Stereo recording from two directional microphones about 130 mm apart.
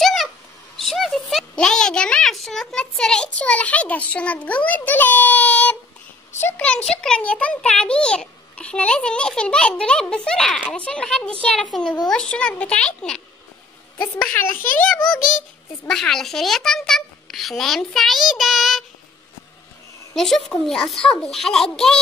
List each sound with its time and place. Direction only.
0.0 s a sound: centre (ahead or behind)
0.7 s a child's voice: centre (ahead or behind); by 14.6 s 15° left (ahead or behind)
15.9 s a child's voice: 5° left (ahead or behind)
20.2 s a child's voice: 5° left (ahead or behind)